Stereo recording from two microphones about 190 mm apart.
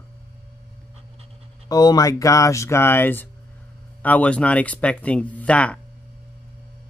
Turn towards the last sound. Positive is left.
turn(degrees=5)  # may be behind; listen again after turning